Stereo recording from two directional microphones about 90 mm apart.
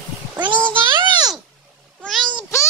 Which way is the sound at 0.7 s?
65° right (ahead or behind).